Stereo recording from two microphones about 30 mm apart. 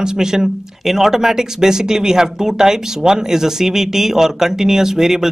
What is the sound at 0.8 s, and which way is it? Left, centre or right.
Speech, centre.